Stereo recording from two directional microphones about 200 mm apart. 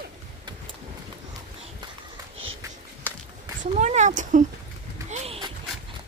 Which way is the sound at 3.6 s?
35° right (ahead or behind).